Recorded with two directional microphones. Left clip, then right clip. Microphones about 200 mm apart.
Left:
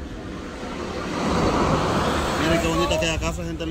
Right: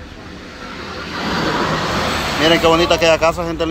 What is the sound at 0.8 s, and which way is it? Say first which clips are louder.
Vehicle: right 3 dB; 65° left (ahead or behind).